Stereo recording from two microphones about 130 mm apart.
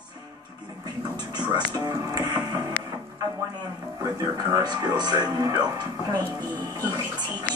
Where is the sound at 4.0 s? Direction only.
25° right (ahead or behind).